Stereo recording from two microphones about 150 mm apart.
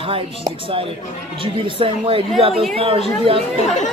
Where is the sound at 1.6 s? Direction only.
35° right (ahead or behind).